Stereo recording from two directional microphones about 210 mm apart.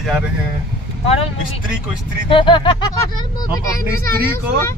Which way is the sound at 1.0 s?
30° left (ahead or behind).